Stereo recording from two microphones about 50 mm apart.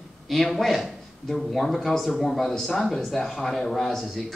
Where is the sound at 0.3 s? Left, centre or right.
Centre.